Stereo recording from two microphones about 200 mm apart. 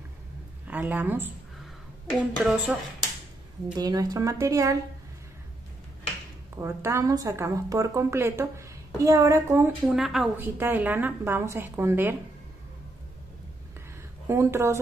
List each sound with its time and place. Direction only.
0.7 s a woman's voice: 10° right (ahead or behind)
3.7 s a woman's voice: 20° right (ahead or behind)
6.6 s a woman's voice: 15° right (ahead or behind)
9.8 s a woman's voice: centre (ahead or behind)
14.2 s a woman's voice: 15° right (ahead or behind)